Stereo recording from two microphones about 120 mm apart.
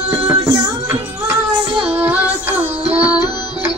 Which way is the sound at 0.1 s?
20° right (ahead or behind).